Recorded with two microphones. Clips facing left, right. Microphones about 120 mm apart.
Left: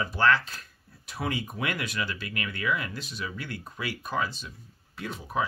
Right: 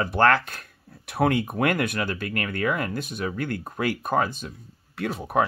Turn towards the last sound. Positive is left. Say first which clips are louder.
# right 7 dB
turn(degrees=-65)  # may be behind; listen again after turning